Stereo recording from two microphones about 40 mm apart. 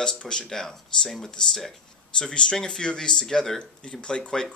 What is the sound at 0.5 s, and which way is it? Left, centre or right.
Speech, centre.